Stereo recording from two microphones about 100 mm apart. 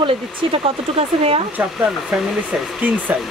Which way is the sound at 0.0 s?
80° right.